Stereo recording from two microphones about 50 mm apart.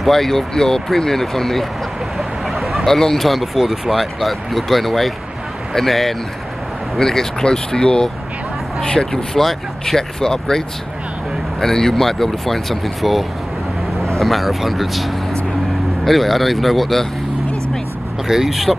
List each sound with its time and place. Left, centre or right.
0.0 s speech: centre
11.6 s speech: centre
14.2 s speech: centre
18.2 s speech: centre